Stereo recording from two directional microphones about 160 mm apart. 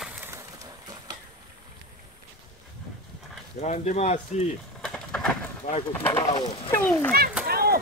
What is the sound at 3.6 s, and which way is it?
Speech, 45° left (ahead or behind).